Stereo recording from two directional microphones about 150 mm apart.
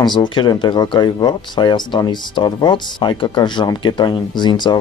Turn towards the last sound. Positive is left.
turn(degrees=30)  # may be behind; listen again after turning